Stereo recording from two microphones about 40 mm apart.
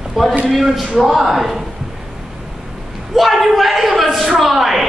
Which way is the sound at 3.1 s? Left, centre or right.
Centre.